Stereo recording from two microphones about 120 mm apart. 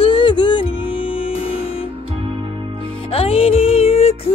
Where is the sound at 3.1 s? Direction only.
55° left (ahead or behind).